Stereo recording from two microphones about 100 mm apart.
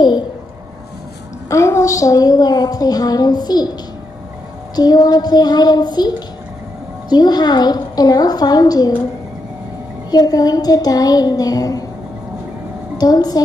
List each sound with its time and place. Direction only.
1.5 s a woman's voice: 30° left (ahead or behind)
4.7 s child singing: 40° left (ahead or behind)
7.1 s a woman's voice: 45° left (ahead or behind)
10.1 s a woman's voice: 40° left (ahead or behind)
12.9 s a woman's voice: 40° left (ahead or behind)